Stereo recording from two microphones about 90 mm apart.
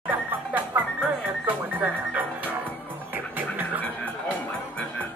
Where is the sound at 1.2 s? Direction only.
20° right (ahead or behind).